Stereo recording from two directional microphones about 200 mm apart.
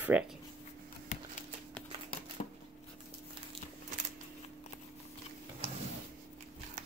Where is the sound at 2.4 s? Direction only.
35° left (ahead or behind).